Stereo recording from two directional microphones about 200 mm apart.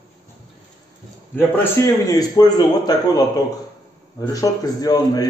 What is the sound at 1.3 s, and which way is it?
A man's voice, 10° left (ahead or behind).